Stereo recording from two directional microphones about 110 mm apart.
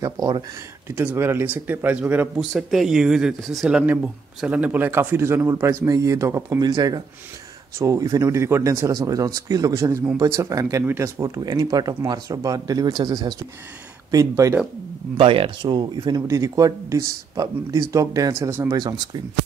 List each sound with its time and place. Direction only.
0.0 s speech: 35° right (ahead or behind)
0.8 s speech: 20° right (ahead or behind)
2.5 s speech: centre (ahead or behind); by 6.7 s 30° right (ahead or behind)
6.7 s speech: 40° right (ahead or behind)
11.2 s speech: 35° right (ahead or behind)
15.1 s speech: 55° right (ahead or behind)
16.2 s speech: 30° right (ahead or behind)
18.7 s speech: 40° right (ahead or behind)